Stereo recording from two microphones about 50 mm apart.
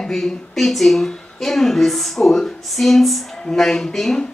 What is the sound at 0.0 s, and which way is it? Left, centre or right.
Speech, centre.